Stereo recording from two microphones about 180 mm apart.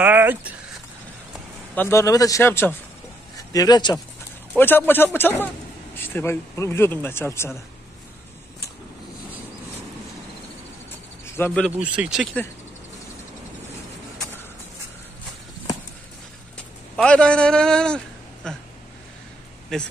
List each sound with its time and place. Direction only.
0.0 s speech: 10° right (ahead or behind)
1.8 s a man's voice: 15° left (ahead or behind)
4.6 s speech: 10° left (ahead or behind)
11.3 s speech: 10° left (ahead or behind)
11.7 s speech: 10° right (ahead or behind)
16.9 s a man's voice: 5° left (ahead or behind)
19.7 s speech: 5° left (ahead or behind)